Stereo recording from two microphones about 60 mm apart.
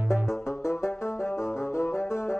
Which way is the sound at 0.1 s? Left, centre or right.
Left.